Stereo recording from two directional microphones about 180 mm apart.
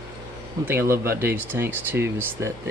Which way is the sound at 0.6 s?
15° right (ahead or behind).